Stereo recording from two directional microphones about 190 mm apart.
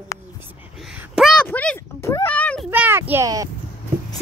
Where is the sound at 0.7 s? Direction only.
5° right (ahead or behind).